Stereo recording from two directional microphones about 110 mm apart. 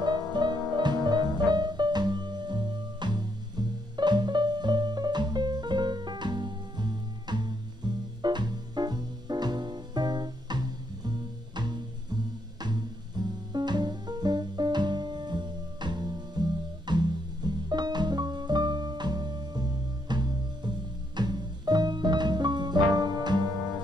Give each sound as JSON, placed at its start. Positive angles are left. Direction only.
{"t": 0.0, "sound": "music", "side_deg": -40}